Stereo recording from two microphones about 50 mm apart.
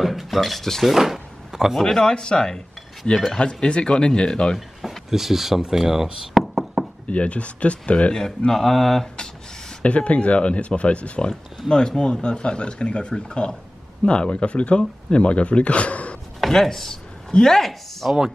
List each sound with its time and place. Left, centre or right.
0.0 s speech: centre
0.9 s drawer open or close: centre
1.8 s speech: centre
3.6 s speech: centre
4.6 s speech: centre
6.3 s knock: centre
7.1 s speech: left; by 9.1 s centre
9.8 s speech: left
16.3 s chopping: centre
17.6 s chopping: centre